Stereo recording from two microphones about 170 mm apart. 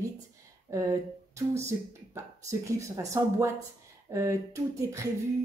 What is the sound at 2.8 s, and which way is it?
Speech, 15° right (ahead or behind).